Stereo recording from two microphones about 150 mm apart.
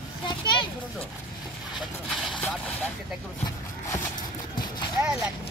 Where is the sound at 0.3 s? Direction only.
30° left (ahead or behind).